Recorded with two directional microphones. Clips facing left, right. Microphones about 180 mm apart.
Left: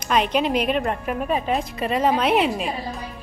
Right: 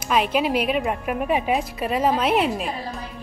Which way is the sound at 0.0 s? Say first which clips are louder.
Even; 5° right (ahead or behind).